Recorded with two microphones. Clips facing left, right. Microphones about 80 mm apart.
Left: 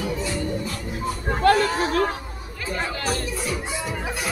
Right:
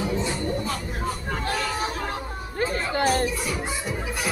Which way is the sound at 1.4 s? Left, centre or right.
Left.